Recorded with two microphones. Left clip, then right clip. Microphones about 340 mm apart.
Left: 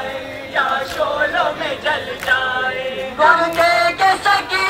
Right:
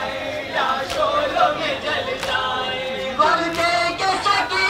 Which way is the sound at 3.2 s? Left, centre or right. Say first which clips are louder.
Left 5 dB; left.